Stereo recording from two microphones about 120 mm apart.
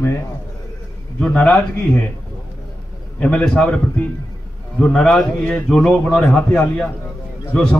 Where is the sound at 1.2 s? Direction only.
10° left (ahead or behind).